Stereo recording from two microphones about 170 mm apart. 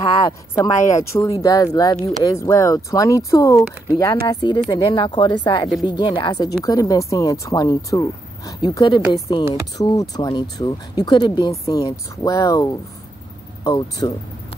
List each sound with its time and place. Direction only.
0.2 s speech: 20° left (ahead or behind)